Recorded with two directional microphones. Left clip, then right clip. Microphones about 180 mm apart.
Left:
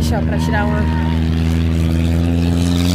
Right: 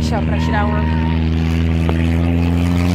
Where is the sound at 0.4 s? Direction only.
40° left (ahead or behind).